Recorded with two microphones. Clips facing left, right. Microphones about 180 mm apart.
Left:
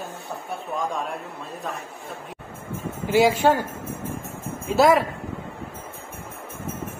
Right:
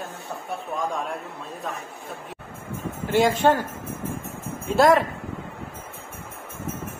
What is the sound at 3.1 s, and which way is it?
Speech, 10° left (ahead or behind).